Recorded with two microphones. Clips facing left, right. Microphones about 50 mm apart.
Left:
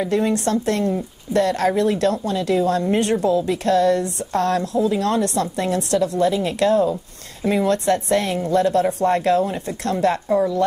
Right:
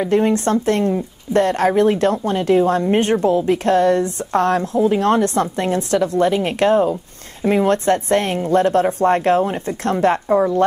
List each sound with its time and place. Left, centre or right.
0.0 s a woman's voice: right